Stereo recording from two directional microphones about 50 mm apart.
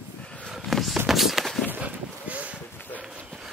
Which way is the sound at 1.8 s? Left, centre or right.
Right.